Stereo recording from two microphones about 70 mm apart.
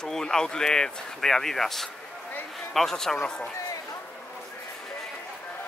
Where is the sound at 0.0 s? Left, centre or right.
Centre.